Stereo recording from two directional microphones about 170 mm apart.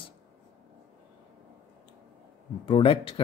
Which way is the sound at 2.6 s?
30° left (ahead or behind).